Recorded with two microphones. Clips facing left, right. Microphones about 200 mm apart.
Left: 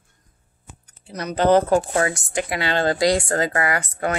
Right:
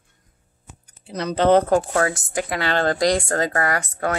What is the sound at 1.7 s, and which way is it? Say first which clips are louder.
A woman's voice: even; 10° left (ahead or behind).